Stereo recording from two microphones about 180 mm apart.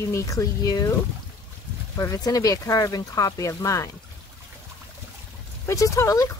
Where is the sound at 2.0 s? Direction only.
20° left (ahead or behind).